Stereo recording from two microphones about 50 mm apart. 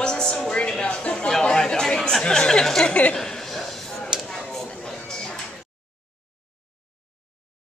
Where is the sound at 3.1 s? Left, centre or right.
Centre.